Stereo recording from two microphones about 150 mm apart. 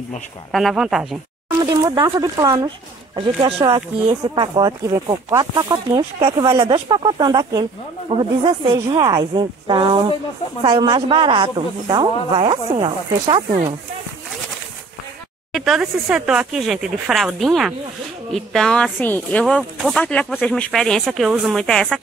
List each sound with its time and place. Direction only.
0.5 s speech: centre (ahead or behind)
1.7 s speech: 25° right (ahead or behind)
3.2 s speech: 40° right (ahead or behind)
4.6 s speech: 25° right (ahead or behind)
6.6 s speech: 35° right (ahead or behind)
15.5 s speech: centre (ahead or behind)
19.4 s speech: centre (ahead or behind)